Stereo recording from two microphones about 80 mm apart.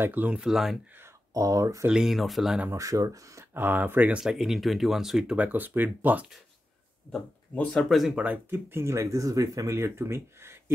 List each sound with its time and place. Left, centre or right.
0.0 s speech: right
0.4 s speech: centre
1.3 s speech: right
1.9 s speech: centre
2.7 s speech: right
3.5 s speech: right
4.2 s speech: centre
5.3 s speech: right
7.9 s speech: centre
8.2 s speech: right